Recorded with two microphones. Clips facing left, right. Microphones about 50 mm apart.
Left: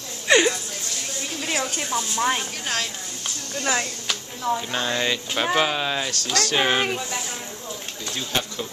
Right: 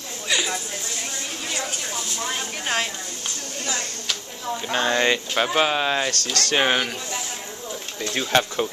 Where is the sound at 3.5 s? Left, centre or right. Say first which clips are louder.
Left 6 dB; left.